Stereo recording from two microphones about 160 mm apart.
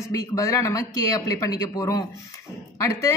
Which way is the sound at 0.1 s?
20° left (ahead or behind).